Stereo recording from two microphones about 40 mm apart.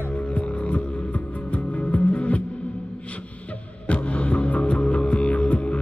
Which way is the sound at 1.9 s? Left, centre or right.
Left.